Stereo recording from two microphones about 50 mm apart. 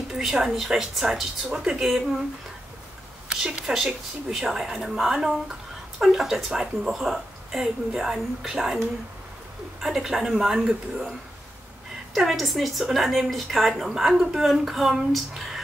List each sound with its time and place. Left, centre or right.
0.1 s a woman's voice: centre
3.3 s speech: centre
3.7 s speech: centre
9.8 s speech: centre
12.1 s a woman's voice: centre